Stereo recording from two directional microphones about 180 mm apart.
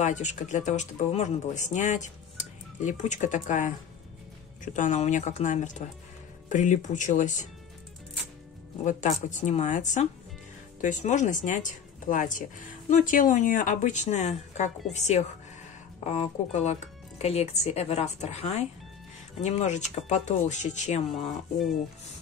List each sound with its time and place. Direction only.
0.0 s speech: 40° left (ahead or behind)
4.7 s speech: 40° left (ahead or behind)
8.8 s speech: 45° left (ahead or behind)